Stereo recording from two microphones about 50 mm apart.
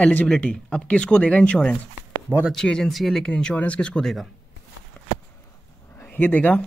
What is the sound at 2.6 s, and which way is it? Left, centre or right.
Speech, centre.